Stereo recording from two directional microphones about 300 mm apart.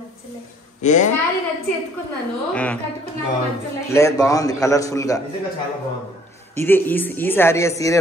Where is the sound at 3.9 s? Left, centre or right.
Centre.